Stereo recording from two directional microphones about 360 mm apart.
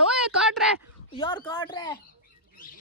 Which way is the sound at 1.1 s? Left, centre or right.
Centre.